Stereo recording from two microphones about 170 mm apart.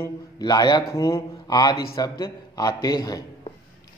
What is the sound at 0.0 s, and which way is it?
A man's voice, 25° left (ahead or behind).